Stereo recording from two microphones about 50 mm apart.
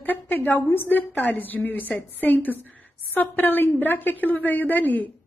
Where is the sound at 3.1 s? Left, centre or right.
Left.